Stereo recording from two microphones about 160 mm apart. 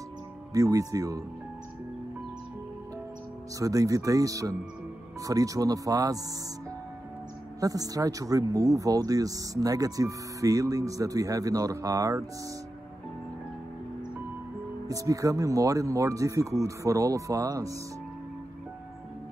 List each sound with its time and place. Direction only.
0.5 s speech: 20° right (ahead or behind)
3.5 s speech: 20° right (ahead or behind)
7.6 s speech: 20° right (ahead or behind)
14.9 s speech: 20° right (ahead or behind)